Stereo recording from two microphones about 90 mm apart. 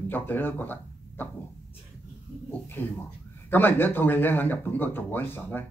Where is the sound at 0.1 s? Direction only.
20° left (ahead or behind).